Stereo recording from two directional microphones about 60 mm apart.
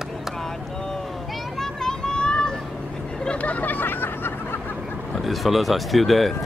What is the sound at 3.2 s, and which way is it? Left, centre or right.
Hubbub, centre.